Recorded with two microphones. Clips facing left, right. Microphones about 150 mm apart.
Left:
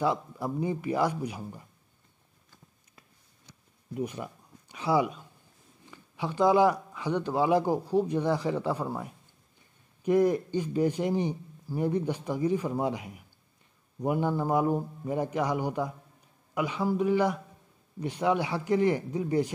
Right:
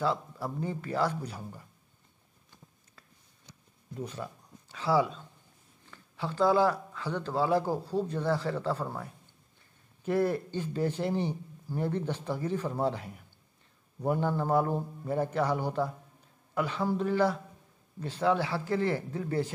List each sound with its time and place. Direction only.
0.0 s speech: 15° left (ahead or behind)
3.9 s speech: 15° left (ahead or behind)